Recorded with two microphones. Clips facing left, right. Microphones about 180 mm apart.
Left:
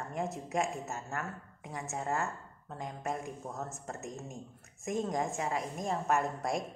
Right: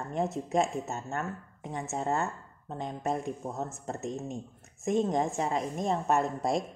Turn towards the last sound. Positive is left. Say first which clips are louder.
# right 4 dB
turn(degrees=-25)  # may be behind; listen again after turning